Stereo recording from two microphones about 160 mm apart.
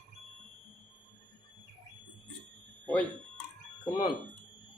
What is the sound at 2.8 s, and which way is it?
Fire alarm, 5° left (ahead or behind).